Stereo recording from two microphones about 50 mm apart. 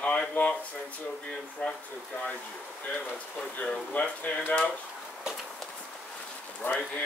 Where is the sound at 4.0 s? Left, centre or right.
Centre.